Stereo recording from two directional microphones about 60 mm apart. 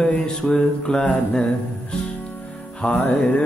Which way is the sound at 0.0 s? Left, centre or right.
Centre.